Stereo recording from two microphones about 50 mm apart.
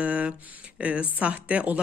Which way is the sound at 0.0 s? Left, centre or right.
Right.